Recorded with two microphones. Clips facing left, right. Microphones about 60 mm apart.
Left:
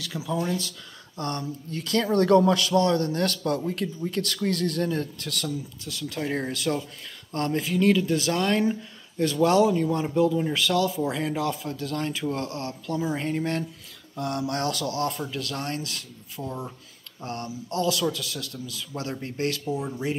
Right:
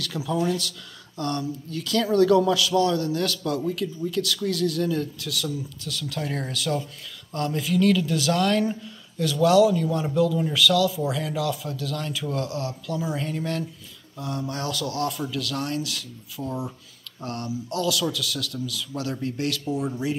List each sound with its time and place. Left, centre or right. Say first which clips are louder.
0.0 s speech: right 3 dB; centre; by 5.5 s left
5.9 s a man's voice: left 1 dB; left
14.1 s speech: left 3 dB; left
14.6 s a man's voice: right 2 dB; left